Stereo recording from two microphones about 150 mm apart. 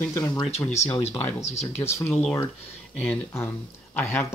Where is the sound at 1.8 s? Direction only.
15° left (ahead or behind).